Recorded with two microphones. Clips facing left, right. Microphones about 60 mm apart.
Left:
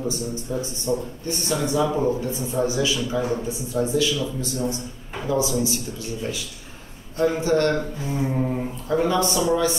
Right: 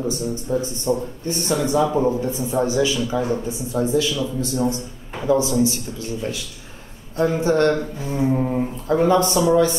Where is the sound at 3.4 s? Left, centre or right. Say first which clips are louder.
Right 2 dB; right.